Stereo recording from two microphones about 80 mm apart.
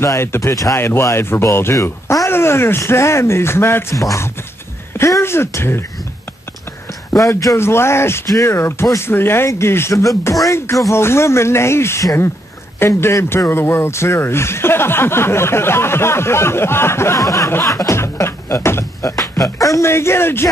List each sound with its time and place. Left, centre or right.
0.0 s speech: left
4.9 s speech: left
7.2 s speech: left